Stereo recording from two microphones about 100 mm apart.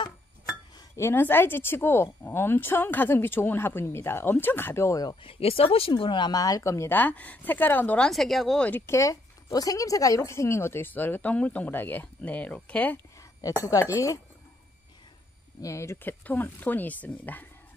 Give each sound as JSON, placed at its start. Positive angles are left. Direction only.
{"t": 0.9, "sound": "a woman's voice", "side_deg": 25}
{"t": 5.2, "sound": "speech", "side_deg": 70}
{"t": 6.9, "sound": "speech", "side_deg": 15}
{"t": 8.1, "sound": "speech", "side_deg": 0}
{"t": 8.5, "sound": "speech", "side_deg": 15}
{"t": 8.8, "sound": "a woman's voice", "side_deg": 30}
{"t": 13.4, "sound": "speech", "side_deg": 35}
{"t": 15.6, "sound": "speech", "side_deg": 30}